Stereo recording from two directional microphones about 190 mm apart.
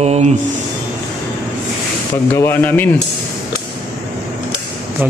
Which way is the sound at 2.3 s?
10° left (ahead or behind).